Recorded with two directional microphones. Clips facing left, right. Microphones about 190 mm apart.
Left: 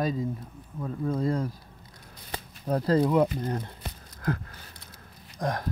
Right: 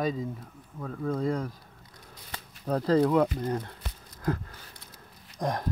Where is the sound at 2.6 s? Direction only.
10° left (ahead or behind).